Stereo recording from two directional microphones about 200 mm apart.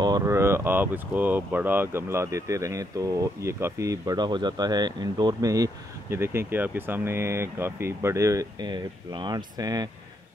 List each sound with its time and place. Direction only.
0.0 s speech: 15° right (ahead or behind)